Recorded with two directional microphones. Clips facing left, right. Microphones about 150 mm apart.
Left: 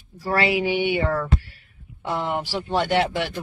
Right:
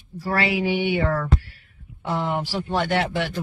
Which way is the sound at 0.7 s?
5° left (ahead or behind).